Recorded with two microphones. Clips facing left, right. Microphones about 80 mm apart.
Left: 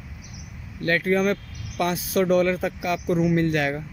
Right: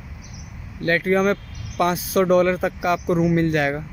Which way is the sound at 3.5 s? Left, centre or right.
Right.